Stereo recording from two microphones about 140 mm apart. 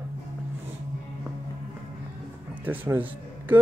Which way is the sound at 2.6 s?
10° right (ahead or behind).